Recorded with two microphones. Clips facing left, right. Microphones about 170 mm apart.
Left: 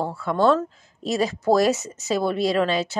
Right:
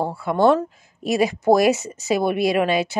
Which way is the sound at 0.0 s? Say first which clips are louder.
Right 3 dB; 10° right (ahead or behind).